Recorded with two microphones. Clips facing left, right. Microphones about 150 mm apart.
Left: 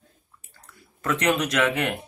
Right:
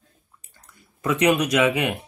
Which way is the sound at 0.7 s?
15° right (ahead or behind).